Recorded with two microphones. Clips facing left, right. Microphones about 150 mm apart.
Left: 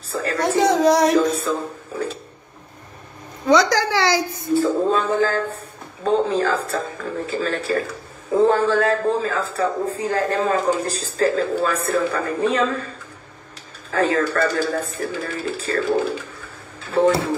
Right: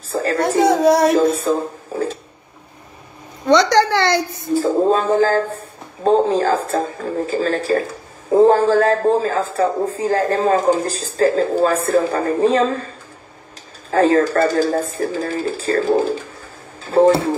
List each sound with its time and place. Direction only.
0.1 s a sound: 35° right (ahead or behind)
0.5 s a sound: centre (ahead or behind)
1.4 s speech: 40° right (ahead or behind)
3.4 s speech: 5° left (ahead or behind)
4.8 s a man's voice: 40° right (ahead or behind)
13.8 s a man's voice: 35° right (ahead or behind)